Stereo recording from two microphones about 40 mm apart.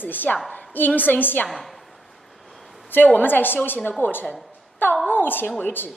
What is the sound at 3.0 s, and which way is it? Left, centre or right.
A woman's voice, left.